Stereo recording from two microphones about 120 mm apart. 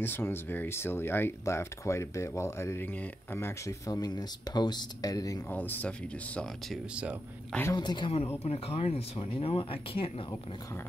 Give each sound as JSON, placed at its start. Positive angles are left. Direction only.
{"t": 0.0, "sound": "speech", "side_deg": 20}
{"t": 5.5, "sound": "speech", "side_deg": 15}
{"t": 7.7, "sound": "a woman's voice", "side_deg": 35}
{"t": 8.5, "sound": "speech", "side_deg": 55}